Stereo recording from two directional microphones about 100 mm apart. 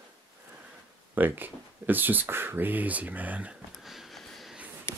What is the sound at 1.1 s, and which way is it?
Speech, 20° right (ahead or behind).